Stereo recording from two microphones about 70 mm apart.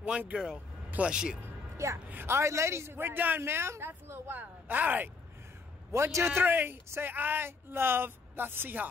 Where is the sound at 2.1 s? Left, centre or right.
Right.